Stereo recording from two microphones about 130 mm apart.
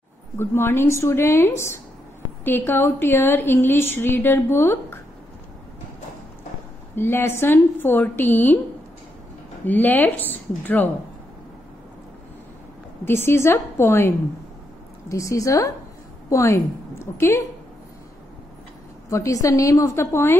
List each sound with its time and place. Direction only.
0.4 s a woman's voice: 20° left (ahead or behind)
7.0 s a woman's voice: 15° left (ahead or behind)
9.7 s a woman's voice: 15° left (ahead or behind)
13.0 s a woman's voice: 20° left (ahead or behind)
19.0 s a woman's voice: 25° left (ahead or behind)